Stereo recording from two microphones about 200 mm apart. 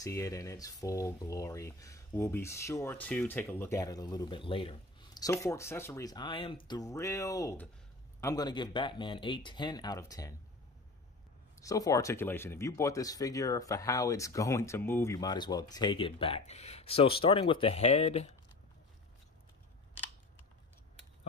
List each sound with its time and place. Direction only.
0.0 s speech: 15° left (ahead or behind)
11.6 s speech: 15° left (ahead or behind); by 18.3 s 30° left (ahead or behind)